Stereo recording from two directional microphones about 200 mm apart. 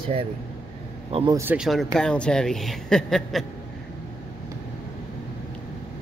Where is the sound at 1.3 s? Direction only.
10° right (ahead or behind).